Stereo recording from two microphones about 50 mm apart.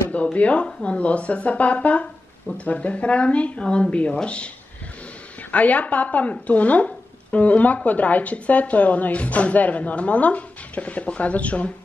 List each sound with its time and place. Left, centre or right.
0.1 s speech: left
5.5 s speech: left